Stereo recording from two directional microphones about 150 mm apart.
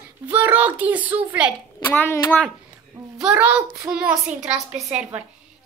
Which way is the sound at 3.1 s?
10° right (ahead or behind).